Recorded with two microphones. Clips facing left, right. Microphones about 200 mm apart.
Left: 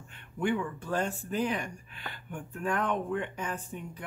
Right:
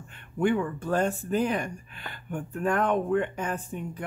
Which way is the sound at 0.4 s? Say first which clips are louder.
Right 5 dB; 45° right (ahead or behind).